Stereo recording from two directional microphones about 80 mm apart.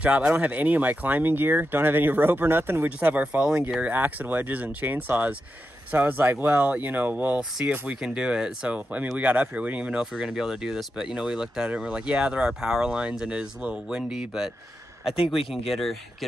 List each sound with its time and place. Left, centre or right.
0.0 s speech: centre
10.1 s speech: centre